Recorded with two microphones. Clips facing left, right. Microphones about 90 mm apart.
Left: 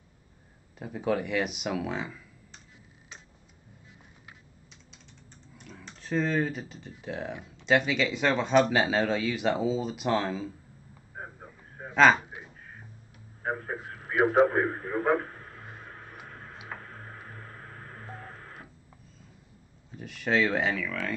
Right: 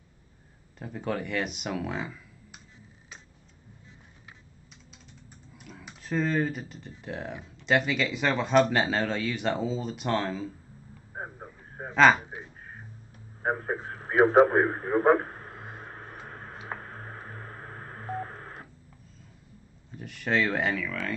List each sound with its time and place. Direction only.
0.7 s speech: 5° left (ahead or behind)
5.6 s speech: 5° right (ahead or behind)
11.1 s a sound: 35° right (ahead or behind)
11.9 s speech: centre (ahead or behind)
13.4 s radio: 35° right (ahead or behind)
20.0 s speech: centre (ahead or behind)